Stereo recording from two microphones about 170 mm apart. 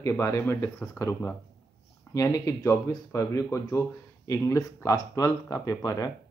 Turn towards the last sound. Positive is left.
turn(degrees=20)  # may be behind; listen again after turning